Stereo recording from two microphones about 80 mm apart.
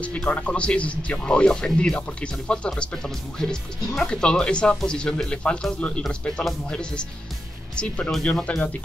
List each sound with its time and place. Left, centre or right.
0.0 s speech: centre
7.7 s speech: centre